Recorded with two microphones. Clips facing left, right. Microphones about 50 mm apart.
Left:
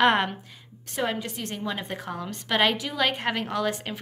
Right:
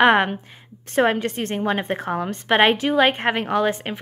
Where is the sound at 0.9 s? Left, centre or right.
Right.